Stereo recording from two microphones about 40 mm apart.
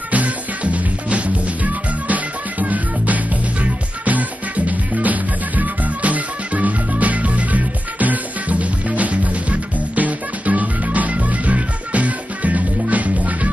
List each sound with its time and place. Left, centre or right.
0.1 s music: right